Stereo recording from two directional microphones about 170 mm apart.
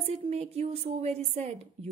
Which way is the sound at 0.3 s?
35° right (ahead or behind).